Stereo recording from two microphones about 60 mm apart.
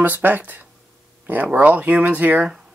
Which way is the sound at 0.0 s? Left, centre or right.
Right.